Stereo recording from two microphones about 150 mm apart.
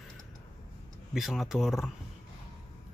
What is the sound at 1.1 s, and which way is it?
Speech, centre (ahead or behind).